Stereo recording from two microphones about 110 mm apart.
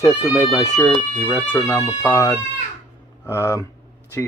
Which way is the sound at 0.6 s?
35° left (ahead or behind).